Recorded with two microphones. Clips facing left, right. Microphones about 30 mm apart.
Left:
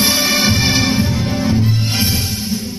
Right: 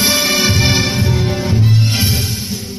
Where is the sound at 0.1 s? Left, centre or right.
Right.